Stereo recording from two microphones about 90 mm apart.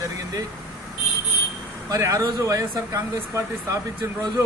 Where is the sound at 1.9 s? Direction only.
40° right (ahead or behind).